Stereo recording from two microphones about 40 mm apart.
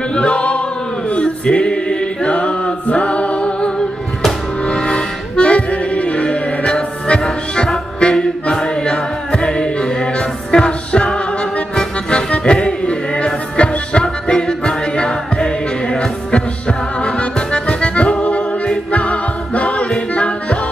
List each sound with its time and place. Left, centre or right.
0.1 s choir: left
1.1 s music: left
6.6 s music: centre
12.1 s music: left
16.3 s accordion: left
18.9 s music: left